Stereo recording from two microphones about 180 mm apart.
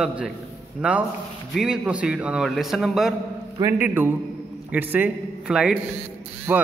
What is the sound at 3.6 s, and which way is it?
A man's voice, 10° right (ahead or behind).